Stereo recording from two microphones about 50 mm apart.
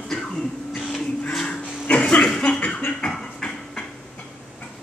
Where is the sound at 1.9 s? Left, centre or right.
Left.